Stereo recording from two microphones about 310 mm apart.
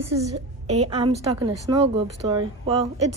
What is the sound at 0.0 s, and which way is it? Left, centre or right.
Speech, centre.